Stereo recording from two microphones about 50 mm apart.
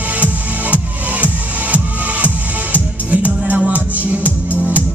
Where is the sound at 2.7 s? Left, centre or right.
Right.